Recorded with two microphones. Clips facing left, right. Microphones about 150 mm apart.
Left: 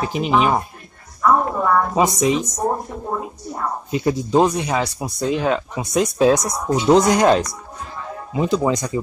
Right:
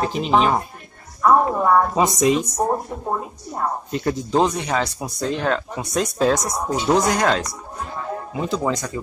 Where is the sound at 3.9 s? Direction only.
10° left (ahead or behind).